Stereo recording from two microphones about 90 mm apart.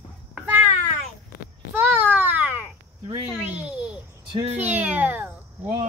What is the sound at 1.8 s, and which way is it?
Babbling, 20° right (ahead or behind).